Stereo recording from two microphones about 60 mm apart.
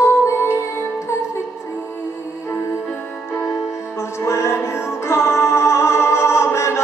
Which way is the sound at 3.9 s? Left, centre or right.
Left.